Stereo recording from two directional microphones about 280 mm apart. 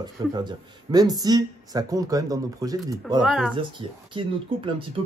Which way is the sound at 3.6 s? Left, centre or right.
Centre.